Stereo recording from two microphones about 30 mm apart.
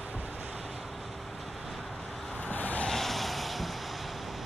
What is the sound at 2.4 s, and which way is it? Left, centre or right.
Vehicle, left.